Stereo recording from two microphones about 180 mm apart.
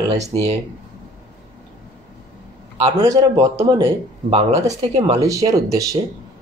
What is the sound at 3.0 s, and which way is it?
Speech, 20° right (ahead or behind).